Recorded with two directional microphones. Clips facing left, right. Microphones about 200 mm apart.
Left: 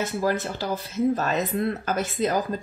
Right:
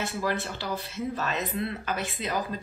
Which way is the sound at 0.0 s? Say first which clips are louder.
Left 5 dB; 40° left (ahead or behind).